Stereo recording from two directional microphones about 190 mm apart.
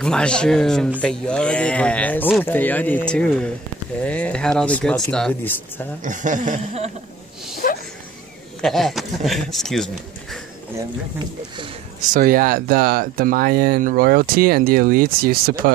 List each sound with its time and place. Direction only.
0.0 s speech: 5° left (ahead or behind)
6.0 s chuckle: 40° right (ahead or behind)
7.6 s a sound: 45° left (ahead or behind)
8.5 s speech: centre (ahead or behind)
12.1 s speech: 50° right (ahead or behind)